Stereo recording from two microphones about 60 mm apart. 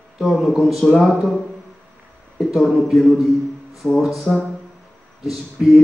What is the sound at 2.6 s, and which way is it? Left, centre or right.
Speech, centre.